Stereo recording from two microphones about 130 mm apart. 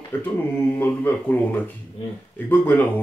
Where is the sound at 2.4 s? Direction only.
15° left (ahead or behind).